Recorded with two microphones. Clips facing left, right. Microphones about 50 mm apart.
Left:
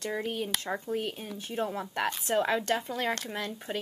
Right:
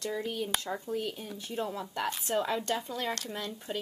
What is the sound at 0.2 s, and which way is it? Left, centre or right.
Speech, left.